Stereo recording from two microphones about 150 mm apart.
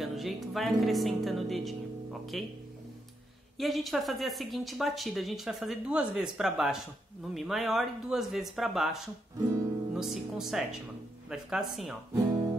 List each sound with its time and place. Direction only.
0.0 s speech: centre (ahead or behind)
3.5 s speech: centre (ahead or behind)
9.4 s music: 25° right (ahead or behind)
9.9 s speech: centre (ahead or behind)